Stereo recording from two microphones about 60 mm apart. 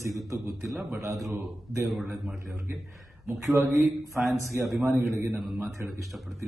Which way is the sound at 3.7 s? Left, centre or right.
Centre.